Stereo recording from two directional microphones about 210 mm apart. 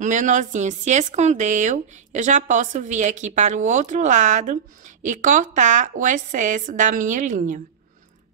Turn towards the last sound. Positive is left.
turn(degrees=-35)  # may be behind; listen again after turning